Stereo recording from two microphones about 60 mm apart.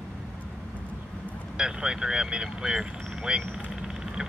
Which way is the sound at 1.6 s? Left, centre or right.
Centre.